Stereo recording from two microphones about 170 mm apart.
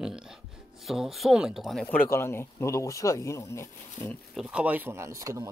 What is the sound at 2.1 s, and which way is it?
Speech, 15° left (ahead or behind).